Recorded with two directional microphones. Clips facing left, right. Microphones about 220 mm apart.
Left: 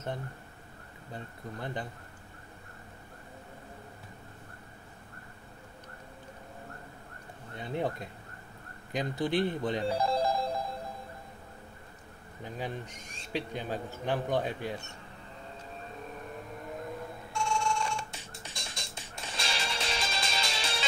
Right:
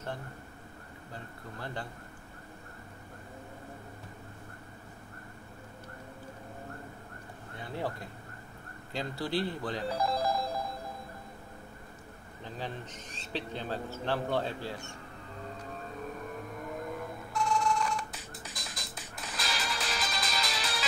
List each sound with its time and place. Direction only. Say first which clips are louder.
1.1 s speech: left 4 dB; 20° left (ahead or behind)
7.5 s speech: left 4 dB; 20° left (ahead or behind)
12.5 s a man's voice: left 2 dB; 10° left (ahead or behind)
17.3 s music: right 2 dB; 30° left (ahead or behind)